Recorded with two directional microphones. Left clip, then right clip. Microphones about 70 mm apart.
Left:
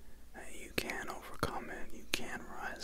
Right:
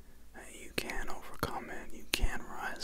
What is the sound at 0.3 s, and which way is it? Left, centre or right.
Whispering, centre.